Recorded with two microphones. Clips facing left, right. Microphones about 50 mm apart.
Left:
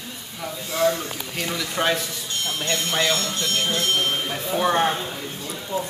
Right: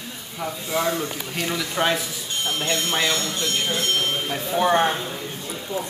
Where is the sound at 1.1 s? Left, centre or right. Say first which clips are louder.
Right 1 dB; centre.